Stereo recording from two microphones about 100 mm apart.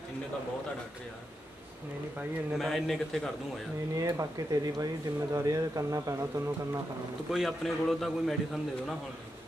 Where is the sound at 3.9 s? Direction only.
35° right (ahead or behind).